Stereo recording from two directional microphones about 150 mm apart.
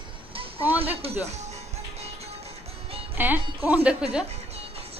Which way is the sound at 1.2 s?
45° right (ahead or behind).